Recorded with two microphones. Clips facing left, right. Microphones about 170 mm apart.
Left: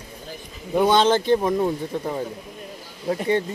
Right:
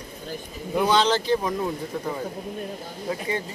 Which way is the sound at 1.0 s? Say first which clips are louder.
Left 4 dB; 55° left (ahead or behind).